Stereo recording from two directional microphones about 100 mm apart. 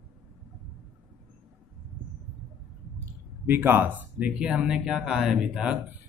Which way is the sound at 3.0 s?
20° right (ahead or behind).